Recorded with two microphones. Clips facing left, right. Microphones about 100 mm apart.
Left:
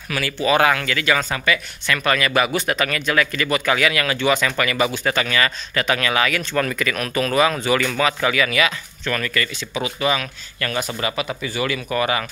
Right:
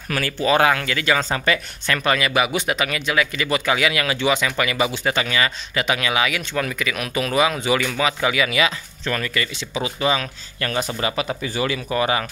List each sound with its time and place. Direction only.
0.1 s speech: 40° right (ahead or behind)
1.4 s speech: 35° right (ahead or behind)
2.0 s speech: 20° right (ahead or behind)